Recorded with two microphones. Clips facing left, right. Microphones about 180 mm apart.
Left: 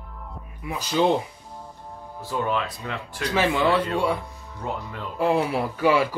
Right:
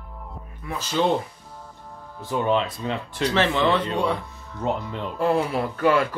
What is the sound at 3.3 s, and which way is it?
Speech, 10° left (ahead or behind).